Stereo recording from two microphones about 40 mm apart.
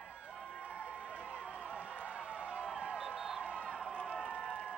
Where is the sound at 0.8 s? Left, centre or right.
Right.